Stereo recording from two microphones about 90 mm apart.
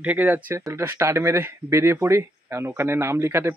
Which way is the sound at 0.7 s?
30° right (ahead or behind).